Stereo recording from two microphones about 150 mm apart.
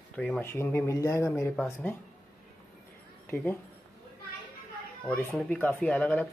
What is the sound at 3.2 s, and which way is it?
Speech, 15° left (ahead or behind).